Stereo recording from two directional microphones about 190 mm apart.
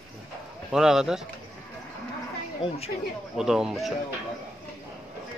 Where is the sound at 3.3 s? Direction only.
5° right (ahead or behind).